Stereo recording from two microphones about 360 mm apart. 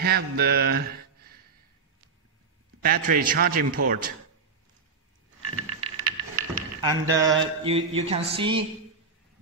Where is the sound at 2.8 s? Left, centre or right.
Right.